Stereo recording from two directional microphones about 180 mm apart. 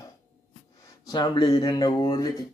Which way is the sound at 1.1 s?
25° left (ahead or behind).